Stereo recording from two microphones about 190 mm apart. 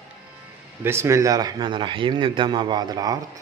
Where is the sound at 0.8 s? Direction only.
15° right (ahead or behind).